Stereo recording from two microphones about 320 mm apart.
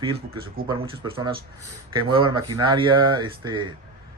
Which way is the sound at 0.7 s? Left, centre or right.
Centre.